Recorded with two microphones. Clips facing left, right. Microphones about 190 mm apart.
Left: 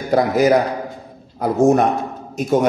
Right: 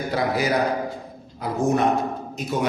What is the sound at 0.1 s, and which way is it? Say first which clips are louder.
A man's voice: left 9 dB; 45° left (ahead or behind).